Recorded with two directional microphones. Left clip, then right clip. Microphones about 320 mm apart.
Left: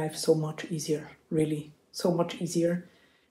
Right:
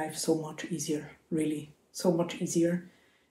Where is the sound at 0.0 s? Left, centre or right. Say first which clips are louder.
Left 4 dB; centre.